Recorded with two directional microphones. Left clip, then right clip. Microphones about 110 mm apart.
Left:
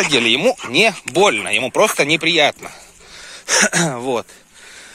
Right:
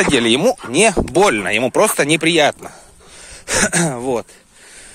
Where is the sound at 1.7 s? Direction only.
90° right.